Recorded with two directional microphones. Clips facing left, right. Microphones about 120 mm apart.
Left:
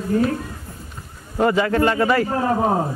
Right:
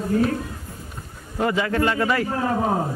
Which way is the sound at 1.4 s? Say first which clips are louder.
Left 4 dB; 40° left (ahead or behind).